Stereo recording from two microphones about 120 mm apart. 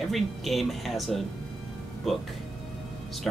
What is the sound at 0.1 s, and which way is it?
Speech, centre (ahead or behind).